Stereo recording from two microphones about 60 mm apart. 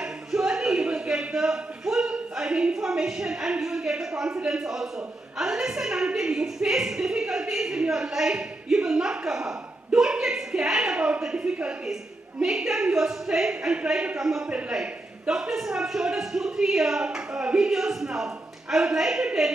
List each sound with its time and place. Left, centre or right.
0.0 s a man's voice: centre